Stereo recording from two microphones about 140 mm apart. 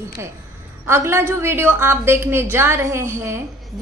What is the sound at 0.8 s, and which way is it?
A woman's voice, 20° right (ahead or behind).